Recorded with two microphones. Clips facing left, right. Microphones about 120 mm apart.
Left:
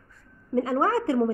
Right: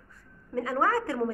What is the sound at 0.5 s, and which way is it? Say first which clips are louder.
Speech: left 3 dB; 25° left (ahead or behind).